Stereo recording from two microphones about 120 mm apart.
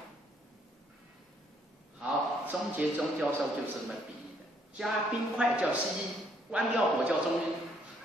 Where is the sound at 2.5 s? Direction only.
10° right (ahead or behind).